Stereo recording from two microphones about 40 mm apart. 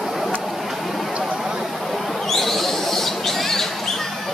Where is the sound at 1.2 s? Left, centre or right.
Centre.